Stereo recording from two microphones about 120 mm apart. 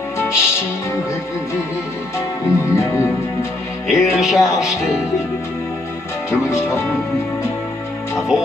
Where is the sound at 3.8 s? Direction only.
5° right (ahead or behind).